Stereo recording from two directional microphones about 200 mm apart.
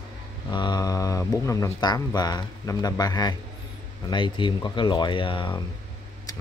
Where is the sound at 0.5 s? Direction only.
20° left (ahead or behind).